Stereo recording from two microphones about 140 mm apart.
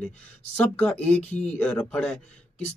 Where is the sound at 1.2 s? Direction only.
55° left (ahead or behind).